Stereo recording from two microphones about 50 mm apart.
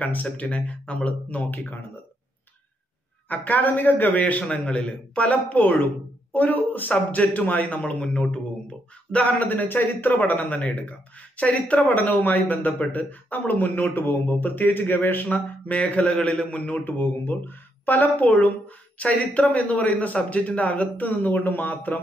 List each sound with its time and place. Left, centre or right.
0.0 s speech: left
1.4 s speech: left
3.3 s speech: left; by 8.4 s centre
9.1 s speech: left
16.8 s speech: left